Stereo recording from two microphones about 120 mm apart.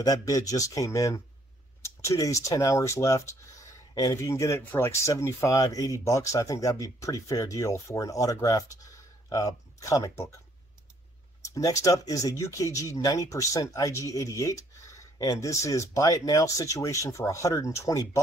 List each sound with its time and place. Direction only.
0.0 s speech: 30° left (ahead or behind)
11.4 s speech: 25° left (ahead or behind)